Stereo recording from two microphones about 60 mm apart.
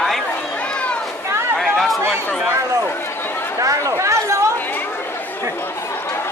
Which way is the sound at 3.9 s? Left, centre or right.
Right.